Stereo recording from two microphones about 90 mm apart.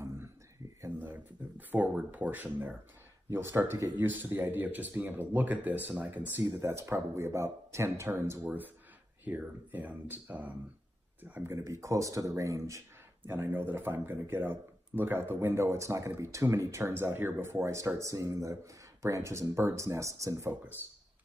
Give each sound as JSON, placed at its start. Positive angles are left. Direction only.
{"t": 0.9, "sound": "speech", "side_deg": -20}
{"t": 11.5, "sound": "speech", "side_deg": -35}
{"t": 13.3, "sound": "speech", "side_deg": -25}